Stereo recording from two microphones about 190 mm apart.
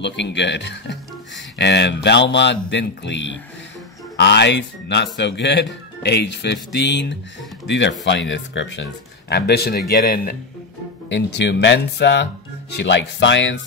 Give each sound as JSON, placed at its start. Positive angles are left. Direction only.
{"t": 0.0, "sound": "a man's voice", "side_deg": 65}
{"t": 9.3, "sound": "speech", "side_deg": 55}
{"t": 11.1, "sound": "a man's voice", "side_deg": 65}